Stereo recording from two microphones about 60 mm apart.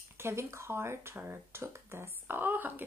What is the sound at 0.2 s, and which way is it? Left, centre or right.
Speech, right.